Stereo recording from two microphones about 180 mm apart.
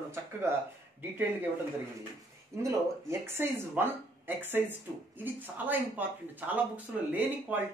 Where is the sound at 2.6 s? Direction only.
15° right (ahead or behind).